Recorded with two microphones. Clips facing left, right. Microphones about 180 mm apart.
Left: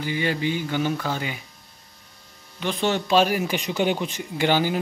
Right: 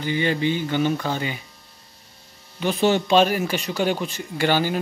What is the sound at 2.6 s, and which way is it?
Speech, 5° right (ahead or behind).